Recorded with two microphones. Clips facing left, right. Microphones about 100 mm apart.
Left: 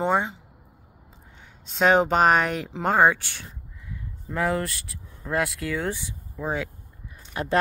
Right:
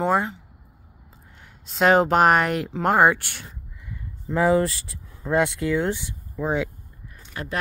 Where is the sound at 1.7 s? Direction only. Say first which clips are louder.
Right 2 dB; centre (ahead or behind).